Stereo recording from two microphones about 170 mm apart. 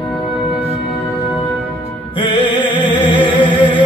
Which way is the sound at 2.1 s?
30° left (ahead or behind).